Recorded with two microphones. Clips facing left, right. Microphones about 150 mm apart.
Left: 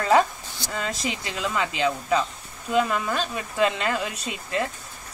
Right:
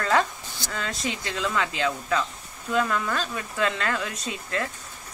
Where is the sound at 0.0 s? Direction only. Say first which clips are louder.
Left 4 dB; 10° left (ahead or behind).